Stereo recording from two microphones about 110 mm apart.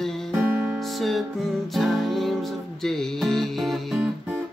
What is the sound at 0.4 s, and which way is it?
Music, 20° right (ahead or behind).